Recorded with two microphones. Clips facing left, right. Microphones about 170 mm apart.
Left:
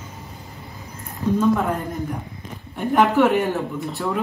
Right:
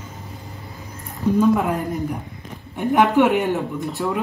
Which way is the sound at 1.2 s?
15° right (ahead or behind).